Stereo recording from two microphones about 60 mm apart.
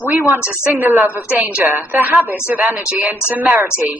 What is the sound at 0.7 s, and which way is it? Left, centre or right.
A woman's voice, right.